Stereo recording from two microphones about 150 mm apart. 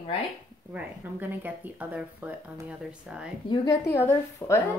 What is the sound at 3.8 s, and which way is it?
Speech, 15° left (ahead or behind).